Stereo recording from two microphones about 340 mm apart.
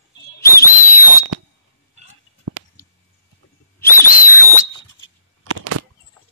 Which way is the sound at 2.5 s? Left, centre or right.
Right.